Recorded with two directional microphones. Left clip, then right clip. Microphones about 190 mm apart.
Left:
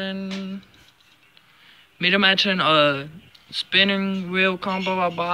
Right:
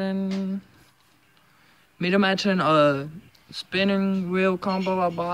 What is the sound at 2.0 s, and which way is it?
A man's voice, 20° right (ahead or behind).